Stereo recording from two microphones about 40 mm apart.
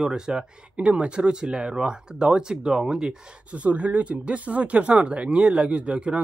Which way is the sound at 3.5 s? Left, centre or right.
Right.